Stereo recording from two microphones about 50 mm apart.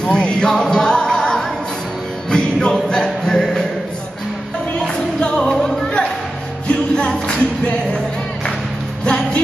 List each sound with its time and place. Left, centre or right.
0.0 s music: centre
4.8 s music: centre
9.0 s music: centre